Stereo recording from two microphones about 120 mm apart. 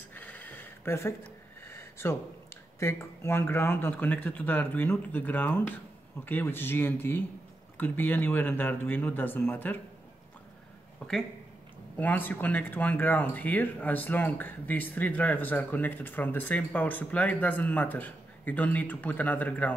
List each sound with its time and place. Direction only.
0.1 s a sound: 15° left (ahead or behind)
2.8 s speech: 25° left (ahead or behind)
11.0 s speech: 5° left (ahead or behind)